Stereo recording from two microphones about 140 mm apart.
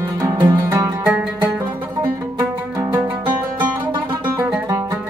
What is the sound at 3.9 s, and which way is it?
Music, 35° right (ahead or behind).